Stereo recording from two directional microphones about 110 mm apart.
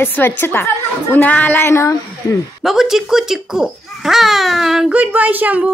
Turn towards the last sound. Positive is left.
turn(degrees=-15)  # may be behind; listen again after turning